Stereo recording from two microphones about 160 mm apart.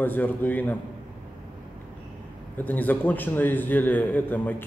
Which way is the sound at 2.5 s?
10° left (ahead or behind).